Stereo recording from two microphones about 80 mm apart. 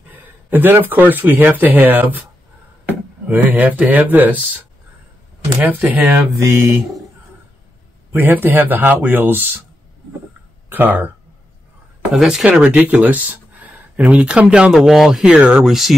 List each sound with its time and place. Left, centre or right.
0.1 s speech: right
5.8 s speech: centre
6.3 s mantra: right
8.1 s speech: right
10.7 s speech: right
12.1 s speech: centre